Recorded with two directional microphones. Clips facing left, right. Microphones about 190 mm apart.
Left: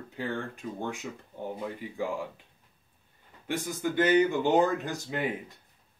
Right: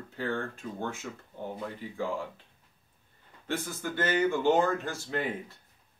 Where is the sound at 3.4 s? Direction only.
15° left (ahead or behind).